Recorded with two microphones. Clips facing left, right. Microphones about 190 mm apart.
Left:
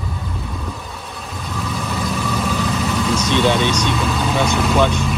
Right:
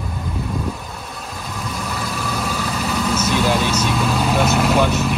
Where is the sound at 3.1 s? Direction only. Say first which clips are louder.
Left 2 dB; 5° right (ahead or behind).